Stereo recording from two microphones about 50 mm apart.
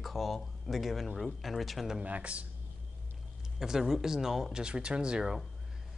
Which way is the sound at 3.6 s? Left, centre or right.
Centre.